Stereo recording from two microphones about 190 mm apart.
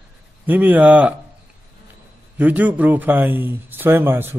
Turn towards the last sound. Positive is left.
turn(degrees=-10)  # may be behind; listen again after turning